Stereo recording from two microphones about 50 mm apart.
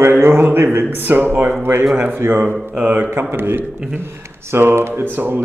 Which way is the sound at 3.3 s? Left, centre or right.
Right.